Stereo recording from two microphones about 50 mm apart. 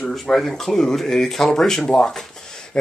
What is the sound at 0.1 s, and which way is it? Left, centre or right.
Speech, centre.